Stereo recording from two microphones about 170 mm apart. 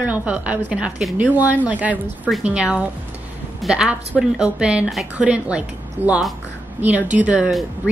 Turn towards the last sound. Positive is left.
turn(degrees=-5)  # may be behind; listen again after turning